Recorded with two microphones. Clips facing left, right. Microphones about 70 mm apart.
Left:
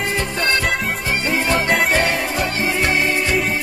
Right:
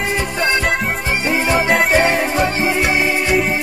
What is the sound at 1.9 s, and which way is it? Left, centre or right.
Music, right.